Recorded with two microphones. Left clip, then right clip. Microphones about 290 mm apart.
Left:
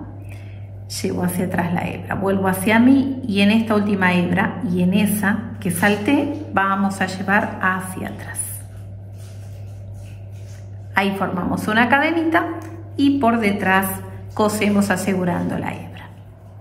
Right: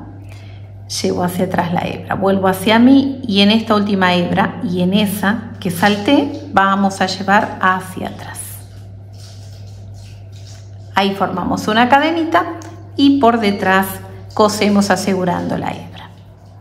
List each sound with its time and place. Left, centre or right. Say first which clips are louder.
0.8 s a woman's voice: right 6 dB; centre
10.9 s a woman's voice: right 4 dB; centre